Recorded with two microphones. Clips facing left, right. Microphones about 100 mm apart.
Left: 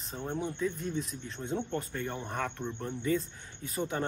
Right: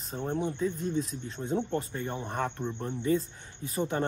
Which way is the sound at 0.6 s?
35° right (ahead or behind).